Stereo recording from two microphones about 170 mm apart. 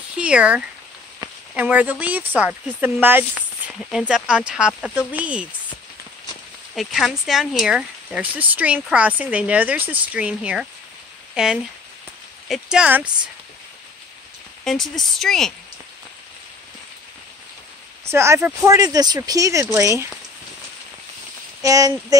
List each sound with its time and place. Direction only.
0.2 s speech: 5° right (ahead or behind)
6.7 s speech: centre (ahead or behind)
14.6 s speech: centre (ahead or behind)
18.0 s speech: 15° right (ahead or behind)
21.6 s speech: 20° right (ahead or behind)